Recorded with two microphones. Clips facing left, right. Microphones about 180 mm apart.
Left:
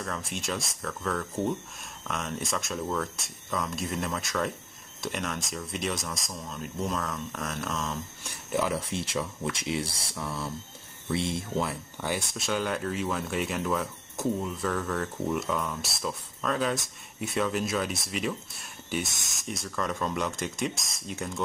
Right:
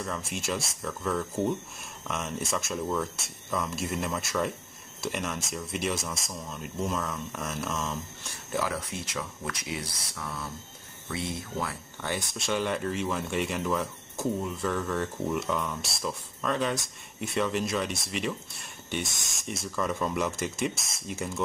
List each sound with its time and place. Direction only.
0.0 s speech: centre (ahead or behind)
8.3 s speech: 20° left (ahead or behind)
12.4 s speech: centre (ahead or behind)